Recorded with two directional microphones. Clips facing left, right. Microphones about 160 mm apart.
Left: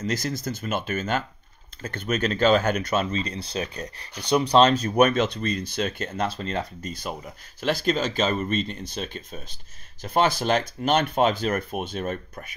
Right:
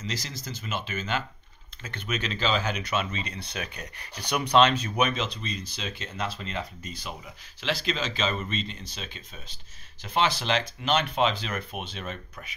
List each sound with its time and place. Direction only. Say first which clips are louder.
0.0 s speech: left 9 dB; 50° left (ahead or behind)